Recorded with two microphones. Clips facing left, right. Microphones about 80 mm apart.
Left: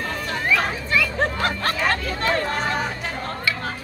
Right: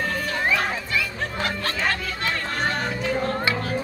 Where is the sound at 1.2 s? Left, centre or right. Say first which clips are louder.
Left 4 dB; left.